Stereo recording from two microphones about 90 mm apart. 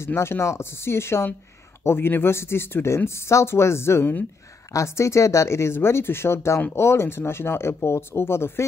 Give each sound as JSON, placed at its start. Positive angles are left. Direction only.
{"t": 0.0, "sound": "speech", "side_deg": 30}
{"t": 4.7, "sound": "speech", "side_deg": 35}